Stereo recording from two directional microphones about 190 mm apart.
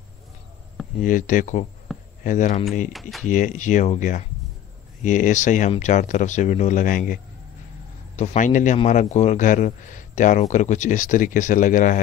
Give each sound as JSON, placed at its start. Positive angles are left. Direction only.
{"t": 0.9, "sound": "speech", "side_deg": 45}
{"t": 1.9, "sound": "a sound", "side_deg": 0}
{"t": 2.2, "sound": "speech", "side_deg": 40}
{"t": 2.9, "sound": "speech", "side_deg": 0}
{"t": 3.3, "sound": "speech", "side_deg": 40}
{"t": 8.2, "sound": "speech", "side_deg": 40}